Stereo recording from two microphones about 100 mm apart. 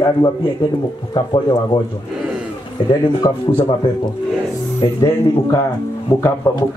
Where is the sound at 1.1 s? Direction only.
55° left (ahead or behind).